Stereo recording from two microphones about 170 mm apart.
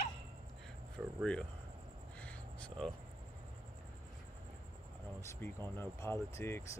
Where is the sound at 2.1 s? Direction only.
5° left (ahead or behind).